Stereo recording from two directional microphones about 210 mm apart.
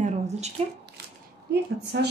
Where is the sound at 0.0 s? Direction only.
30° right (ahead or behind).